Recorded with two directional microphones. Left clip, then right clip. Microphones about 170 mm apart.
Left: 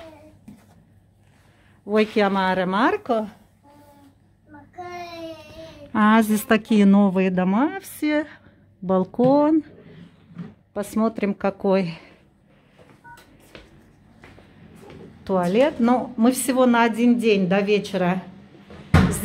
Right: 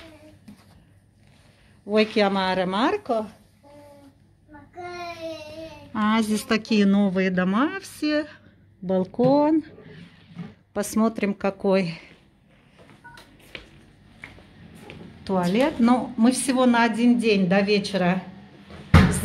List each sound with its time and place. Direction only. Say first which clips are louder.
1.9 s a woman's voice: left 1 dB; 15° left (ahead or behind); by 3.3 s 35° left (ahead or behind)
5.9 s a woman's voice: left 5 dB; 25° left (ahead or behind)
10.7 s a woman's voice: even; centre (ahead or behind)
15.2 s a woman's voice: left 4 dB; 10° left (ahead or behind)